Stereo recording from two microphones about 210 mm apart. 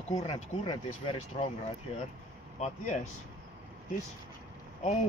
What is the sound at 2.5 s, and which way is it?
Speech, 30° left (ahead or behind).